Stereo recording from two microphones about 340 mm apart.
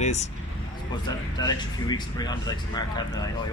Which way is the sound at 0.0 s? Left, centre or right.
Centre.